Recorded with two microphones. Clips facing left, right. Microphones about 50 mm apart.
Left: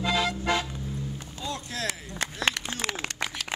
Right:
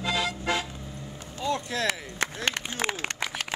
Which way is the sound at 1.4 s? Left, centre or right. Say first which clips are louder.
Right 5 dB; right.